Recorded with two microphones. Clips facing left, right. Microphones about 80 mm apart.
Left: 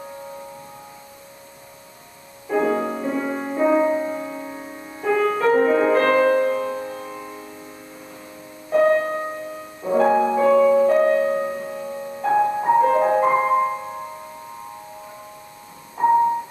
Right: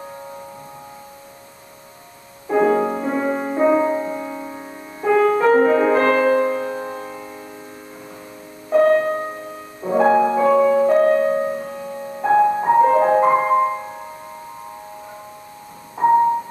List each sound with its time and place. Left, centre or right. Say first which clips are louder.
2.5 s music: right 4 dB; centre
3.6 s music: right 1 dB; centre
8.8 s music: right 2 dB; centre
9.8 s music: right 2 dB; centre
11.0 s music: right 2 dB; centre
11.2 s music: right 3 dB; centre
16.0 s music: right 2 dB; centre